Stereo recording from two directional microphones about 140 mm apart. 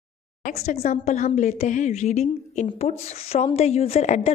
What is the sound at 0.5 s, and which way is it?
A woman's voice, 50° left (ahead or behind).